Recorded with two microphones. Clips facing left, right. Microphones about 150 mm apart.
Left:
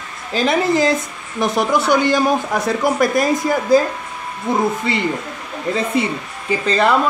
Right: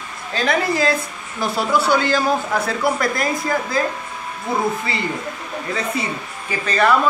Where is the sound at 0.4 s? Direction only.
20° left (ahead or behind).